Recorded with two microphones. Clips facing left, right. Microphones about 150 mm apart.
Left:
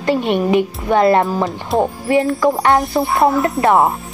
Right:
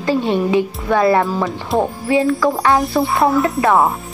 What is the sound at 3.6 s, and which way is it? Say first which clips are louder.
Speech: left 3 dB; 20° left (ahead or behind).